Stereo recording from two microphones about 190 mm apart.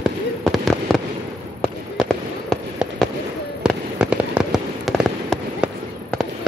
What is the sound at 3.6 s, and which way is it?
Fireworks, 5° right (ahead or behind).